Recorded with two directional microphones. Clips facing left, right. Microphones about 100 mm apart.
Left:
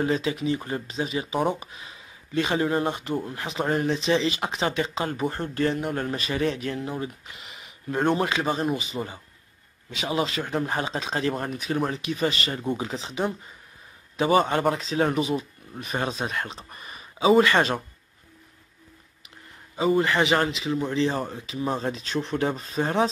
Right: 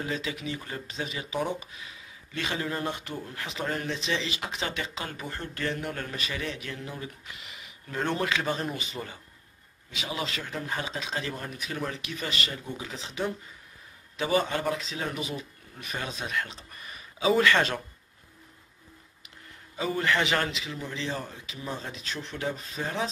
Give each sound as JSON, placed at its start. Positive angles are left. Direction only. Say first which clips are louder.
{"t": 0.0, "sound": "speech", "louder": "left 8 dB", "side_deg": 35}
{"t": 5.2, "sound": "speech", "louder": "left 9 dB", "side_deg": 45}
{"t": 5.5, "sound": "speech", "louder": "left 4 dB", "side_deg": 30}
{"t": 6.8, "sound": "speech", "louder": "left 8 dB", "side_deg": 30}
{"t": 8.2, "sound": "speech", "louder": "left 4 dB", "side_deg": 25}
{"t": 9.8, "sound": "speech", "louder": "left 6 dB", "side_deg": 45}
{"t": 10.1, "sound": "speech", "louder": "left 8 dB", "side_deg": 25}
{"t": 10.4, "sound": "speech", "louder": "left 7 dB", "side_deg": 45}
{"t": 11.5, "sound": "speech", "louder": "left 7 dB", "side_deg": 35}
{"t": 14.1, "sound": "speech", "louder": "left 6 dB", "side_deg": 40}
{"t": 15.1, "sound": "speech", "louder": "left 9 dB", "side_deg": 30}
{"t": 19.8, "sound": "speech", "louder": "left 6 dB", "side_deg": 25}
{"t": 20.7, "sound": "speech", "louder": "left 9 dB", "side_deg": 40}